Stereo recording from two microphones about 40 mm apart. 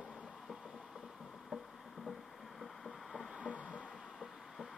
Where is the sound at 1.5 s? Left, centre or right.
Centre.